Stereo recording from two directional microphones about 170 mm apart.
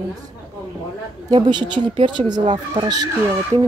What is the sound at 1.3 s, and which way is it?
Speech, 25° right (ahead or behind).